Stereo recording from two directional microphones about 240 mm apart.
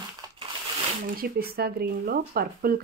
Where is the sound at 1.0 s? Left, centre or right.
Right.